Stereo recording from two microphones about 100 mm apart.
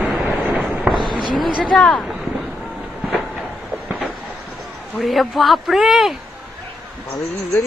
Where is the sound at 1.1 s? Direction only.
50° right (ahead or behind).